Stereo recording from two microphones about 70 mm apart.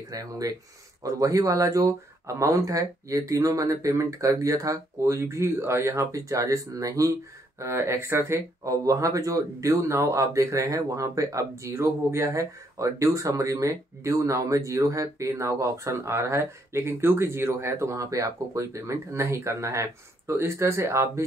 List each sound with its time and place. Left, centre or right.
0.1 s speech: right
8.6 s speech: right